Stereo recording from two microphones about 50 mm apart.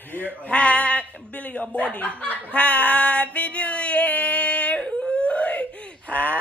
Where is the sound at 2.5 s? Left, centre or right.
Left.